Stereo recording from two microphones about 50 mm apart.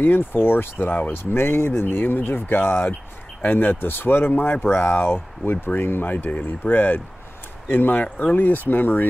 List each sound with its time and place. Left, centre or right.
0.0 s speech: left
5.1 s speech: left